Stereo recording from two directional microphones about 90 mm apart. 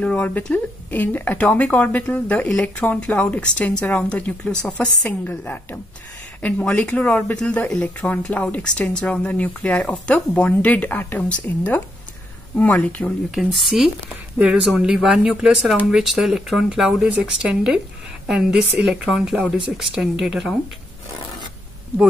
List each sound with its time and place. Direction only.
0.0 s a woman's voice: 15° left (ahead or behind)
13.3 s speech: centre (ahead or behind)